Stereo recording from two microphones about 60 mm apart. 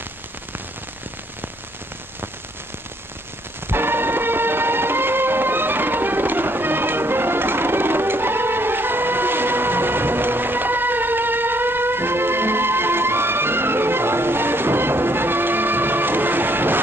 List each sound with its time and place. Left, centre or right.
3.6 s music: right